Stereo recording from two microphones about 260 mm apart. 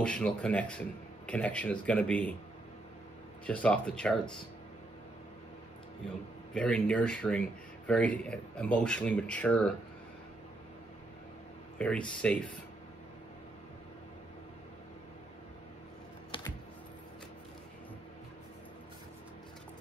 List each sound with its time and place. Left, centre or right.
0.0 s speech: centre
3.4 s speech: centre
6.5 s speech: centre
11.8 s speech: centre
16.3 s computer keyboard: centre